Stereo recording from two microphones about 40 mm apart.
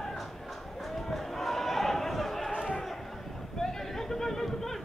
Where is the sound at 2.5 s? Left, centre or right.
Right.